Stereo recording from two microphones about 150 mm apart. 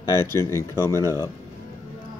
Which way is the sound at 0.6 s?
20° left (ahead or behind).